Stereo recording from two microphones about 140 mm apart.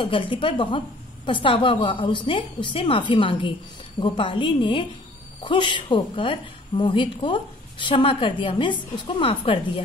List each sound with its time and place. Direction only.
0.0 s a woman's voice: 40° left (ahead or behind)